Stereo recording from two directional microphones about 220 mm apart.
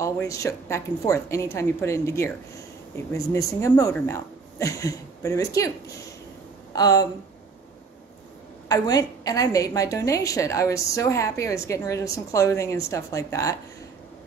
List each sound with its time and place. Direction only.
0.0 s a woman's voice: 15° left (ahead or behind)
6.7 s speech: 15° left (ahead or behind)
8.6 s a woman's voice: 15° left (ahead or behind)